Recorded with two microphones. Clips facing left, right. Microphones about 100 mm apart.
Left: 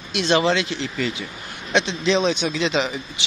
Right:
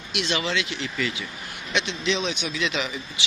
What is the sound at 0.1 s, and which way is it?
A man's voice, 30° left (ahead or behind).